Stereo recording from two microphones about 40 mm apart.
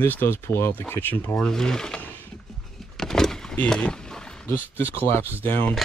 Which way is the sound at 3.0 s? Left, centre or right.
Centre.